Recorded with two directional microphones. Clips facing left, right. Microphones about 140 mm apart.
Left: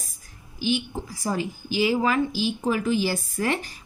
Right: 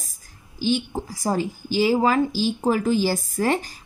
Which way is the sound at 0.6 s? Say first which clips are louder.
Right 3 dB; 35° right (ahead or behind).